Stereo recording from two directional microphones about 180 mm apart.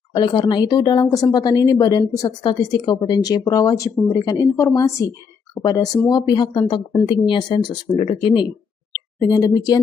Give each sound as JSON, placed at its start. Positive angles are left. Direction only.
{"t": 0.1, "sound": "speech", "side_deg": 25}
{"t": 6.0, "sound": "speech", "side_deg": 25}